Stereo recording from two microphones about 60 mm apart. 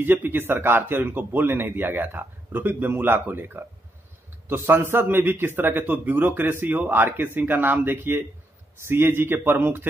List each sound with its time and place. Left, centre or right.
0.0 s a man's voice: right